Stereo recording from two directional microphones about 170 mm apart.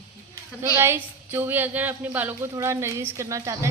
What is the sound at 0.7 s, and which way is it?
A woman's voice, 15° right (ahead or behind).